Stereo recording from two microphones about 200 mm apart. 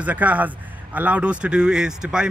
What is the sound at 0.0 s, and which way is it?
A man's voice, 10° right (ahead or behind).